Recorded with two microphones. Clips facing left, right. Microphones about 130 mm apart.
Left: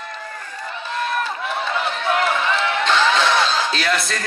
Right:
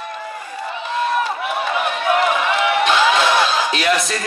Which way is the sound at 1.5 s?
15° right (ahead or behind).